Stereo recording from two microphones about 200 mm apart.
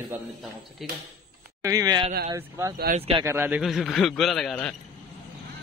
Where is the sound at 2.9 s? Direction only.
30° right (ahead or behind).